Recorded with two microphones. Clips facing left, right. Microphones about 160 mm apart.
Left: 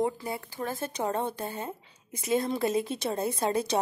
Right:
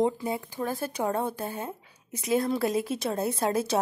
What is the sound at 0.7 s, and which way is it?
A woman's voice, 5° right (ahead or behind).